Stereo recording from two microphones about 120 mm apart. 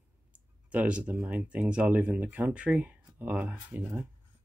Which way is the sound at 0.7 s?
10° right (ahead or behind).